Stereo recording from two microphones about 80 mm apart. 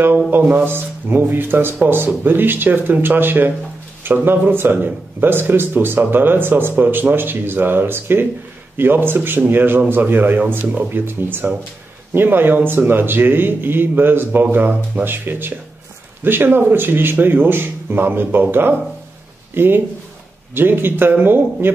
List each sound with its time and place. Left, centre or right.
0.3 s speech: right